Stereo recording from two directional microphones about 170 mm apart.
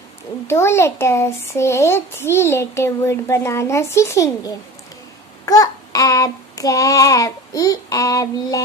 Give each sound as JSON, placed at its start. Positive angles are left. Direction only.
{"t": 0.5, "sound": "a child's voice", "side_deg": 15}
{"t": 5.4, "sound": "child singing", "side_deg": 20}